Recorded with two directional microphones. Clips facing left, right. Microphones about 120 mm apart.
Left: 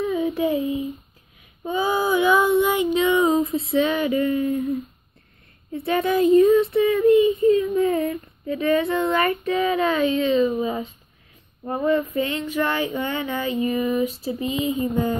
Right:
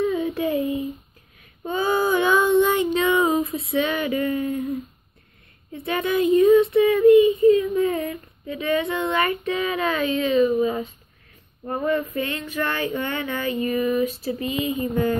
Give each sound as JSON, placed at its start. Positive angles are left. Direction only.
{"t": 0.1, "sound": "a sound", "side_deg": 15}
{"t": 1.6, "sound": "female singing", "side_deg": 10}
{"t": 5.7, "sound": "child singing", "side_deg": 35}
{"t": 7.4, "sound": "speech", "side_deg": 35}
{"t": 10.6, "sound": "child singing", "side_deg": 15}